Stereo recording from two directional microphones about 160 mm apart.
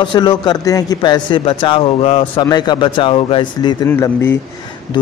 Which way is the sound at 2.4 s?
25° left (ahead or behind).